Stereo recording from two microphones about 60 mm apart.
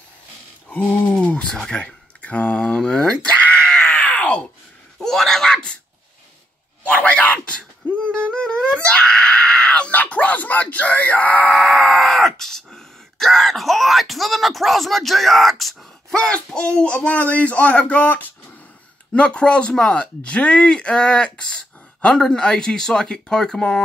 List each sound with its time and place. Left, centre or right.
0.9 s speech: left
3.3 s groan: centre
5.0 s screaming: centre
6.9 s a sound: left
7.3 s wail: centre
11.5 s groan: centre
16.2 s speech: centre